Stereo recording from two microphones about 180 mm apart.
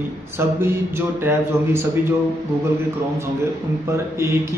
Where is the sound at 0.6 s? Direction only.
10° right (ahead or behind).